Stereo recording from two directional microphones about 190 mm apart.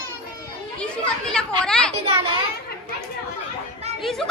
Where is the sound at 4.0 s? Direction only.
Centre (ahead or behind).